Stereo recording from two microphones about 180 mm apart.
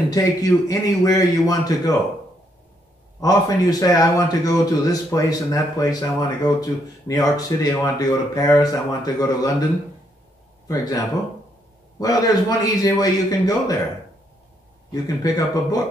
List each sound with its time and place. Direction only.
0.1 s a man's voice: 20° left (ahead or behind)
3.2 s a man's voice: 20° left (ahead or behind)
10.7 s a man's voice: 20° left (ahead or behind)
14.9 s a man's voice: 20° left (ahead or behind)